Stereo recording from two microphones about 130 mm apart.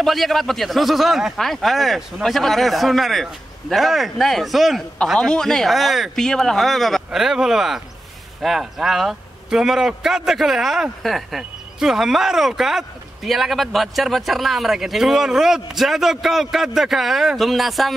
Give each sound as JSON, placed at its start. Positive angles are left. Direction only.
{"t": 0.0, "sound": "a man's voice", "side_deg": 0}